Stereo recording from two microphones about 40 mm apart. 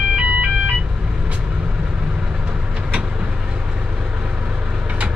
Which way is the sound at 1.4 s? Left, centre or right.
Right.